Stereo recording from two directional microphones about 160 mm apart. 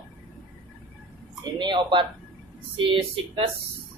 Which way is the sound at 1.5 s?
30° right (ahead or behind).